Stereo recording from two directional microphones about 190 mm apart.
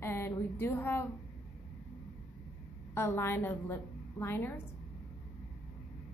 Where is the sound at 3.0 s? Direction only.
15° left (ahead or behind).